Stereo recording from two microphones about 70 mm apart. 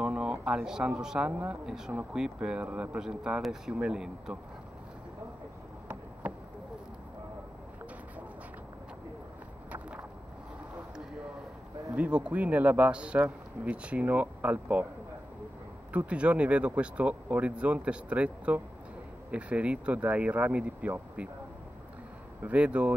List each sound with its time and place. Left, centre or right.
0.0 s a sound: centre
0.8 s speech: centre
9.7 s a sound: centre
11.9 s speech: centre
15.9 s speech: centre
22.4 s speech: right